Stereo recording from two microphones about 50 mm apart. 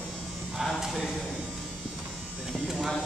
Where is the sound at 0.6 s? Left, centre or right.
Centre.